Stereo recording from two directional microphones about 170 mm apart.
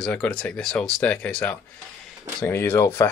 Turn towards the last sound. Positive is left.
turn(degrees=15)  # may be behind; listen again after turning